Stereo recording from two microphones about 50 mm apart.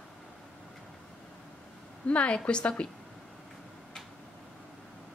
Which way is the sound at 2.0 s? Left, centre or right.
Left.